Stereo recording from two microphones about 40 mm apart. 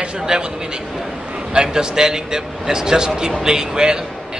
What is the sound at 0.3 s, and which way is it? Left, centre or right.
Speech, centre.